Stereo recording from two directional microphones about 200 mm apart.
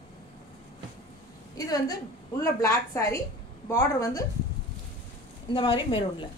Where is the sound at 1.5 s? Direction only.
20° left (ahead or behind).